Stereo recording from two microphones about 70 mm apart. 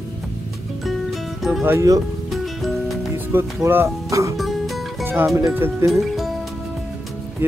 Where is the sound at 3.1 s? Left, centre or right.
Right.